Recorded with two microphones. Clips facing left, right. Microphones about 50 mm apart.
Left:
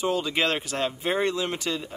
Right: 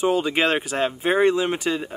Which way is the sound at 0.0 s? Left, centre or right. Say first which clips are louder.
Right 5 dB; right.